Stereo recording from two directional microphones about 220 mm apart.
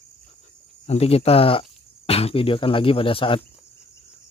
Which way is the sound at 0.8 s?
30° left (ahead or behind).